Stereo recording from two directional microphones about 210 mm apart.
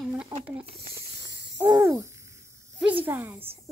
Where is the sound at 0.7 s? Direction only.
50° right (ahead or behind).